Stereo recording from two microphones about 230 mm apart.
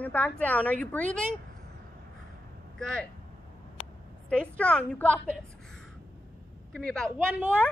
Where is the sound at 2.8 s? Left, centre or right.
Centre.